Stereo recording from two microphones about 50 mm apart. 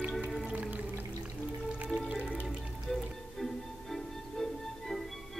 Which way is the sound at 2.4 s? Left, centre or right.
Centre.